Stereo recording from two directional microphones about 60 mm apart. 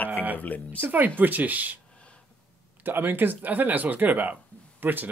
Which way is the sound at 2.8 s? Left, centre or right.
Right.